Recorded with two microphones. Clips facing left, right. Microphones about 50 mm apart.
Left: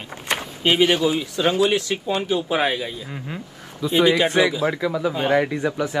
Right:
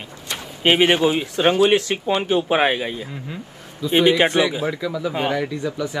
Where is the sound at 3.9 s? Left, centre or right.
Right.